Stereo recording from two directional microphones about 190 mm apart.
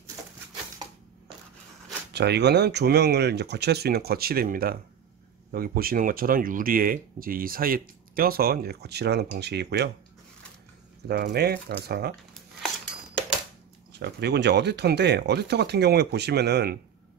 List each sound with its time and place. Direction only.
2.1 s speech: 60° right (ahead or behind)
11.1 s speech: 55° right (ahead or behind)
13.9 s speech: 60° right (ahead or behind)